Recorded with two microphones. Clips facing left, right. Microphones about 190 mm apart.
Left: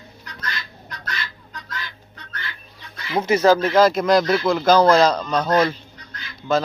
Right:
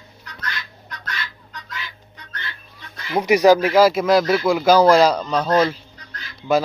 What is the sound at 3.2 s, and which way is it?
Speech, 15° right (ahead or behind).